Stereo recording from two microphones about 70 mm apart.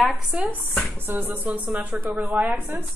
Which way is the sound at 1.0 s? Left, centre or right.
Right.